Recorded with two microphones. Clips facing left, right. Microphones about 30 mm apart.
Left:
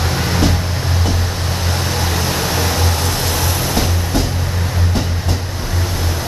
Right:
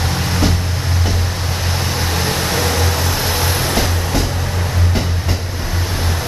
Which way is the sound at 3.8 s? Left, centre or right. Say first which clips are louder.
Even; centre.